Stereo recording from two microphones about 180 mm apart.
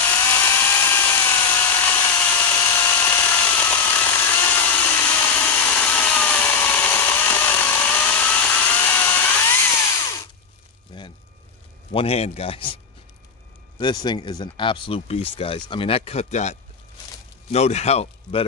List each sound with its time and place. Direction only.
0.0 s tools: 15° left (ahead or behind)
10.9 s a sound: 25° left (ahead or behind)
11.9 s a man's voice: 35° left (ahead or behind)